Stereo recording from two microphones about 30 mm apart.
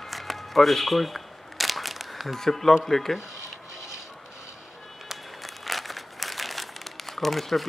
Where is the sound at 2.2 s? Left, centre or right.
Centre.